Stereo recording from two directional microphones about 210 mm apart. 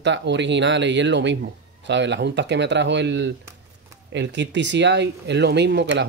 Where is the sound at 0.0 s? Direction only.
55° right (ahead or behind).